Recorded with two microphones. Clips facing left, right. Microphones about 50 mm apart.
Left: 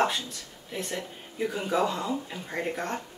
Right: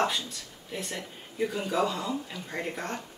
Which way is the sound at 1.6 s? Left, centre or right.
Centre.